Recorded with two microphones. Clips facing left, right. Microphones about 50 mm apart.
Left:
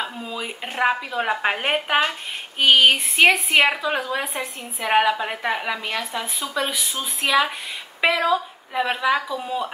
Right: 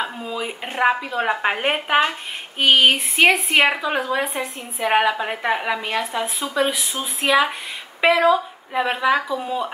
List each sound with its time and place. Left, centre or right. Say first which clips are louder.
0.0 s a woman's voice: right 3 dB; centre